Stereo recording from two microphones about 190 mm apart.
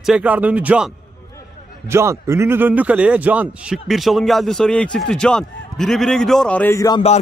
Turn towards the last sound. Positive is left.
turn(degrees=15)  # may be behind; listen again after turning